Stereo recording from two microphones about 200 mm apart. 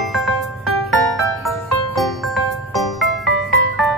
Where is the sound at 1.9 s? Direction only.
Centre (ahead or behind).